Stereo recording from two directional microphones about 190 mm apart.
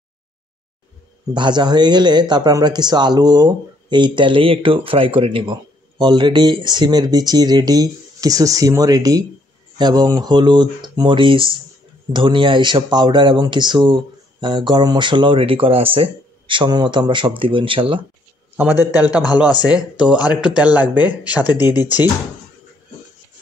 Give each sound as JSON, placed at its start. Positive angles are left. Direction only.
{"t": 1.3, "sound": "speech", "side_deg": -25}
{"t": 19.0, "sound": "speech", "side_deg": 20}
{"t": 19.7, "sound": "speech", "side_deg": -5}